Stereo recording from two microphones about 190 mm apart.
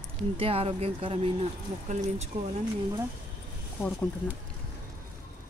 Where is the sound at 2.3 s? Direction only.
35° right (ahead or behind).